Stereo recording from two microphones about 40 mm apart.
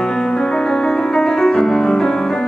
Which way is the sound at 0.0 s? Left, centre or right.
Centre.